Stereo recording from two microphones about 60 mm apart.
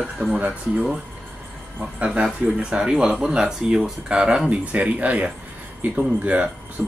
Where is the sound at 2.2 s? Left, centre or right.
Centre.